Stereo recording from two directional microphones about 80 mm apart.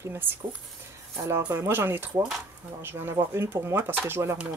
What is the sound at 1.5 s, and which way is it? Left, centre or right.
Speech, right.